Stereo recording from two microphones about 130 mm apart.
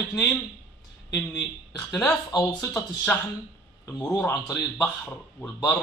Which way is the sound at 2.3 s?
25° left (ahead or behind).